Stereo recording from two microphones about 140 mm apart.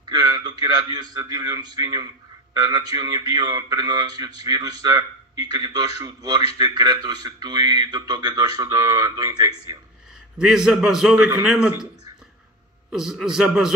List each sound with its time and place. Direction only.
0.0 s a man's voice: 30° right (ahead or behind)
10.3 s a man's voice: 5° right (ahead or behind)
12.9 s a man's voice: 5° right (ahead or behind)